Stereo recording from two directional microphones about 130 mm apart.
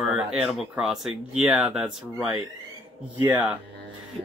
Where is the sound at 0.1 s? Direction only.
5° right (ahead or behind).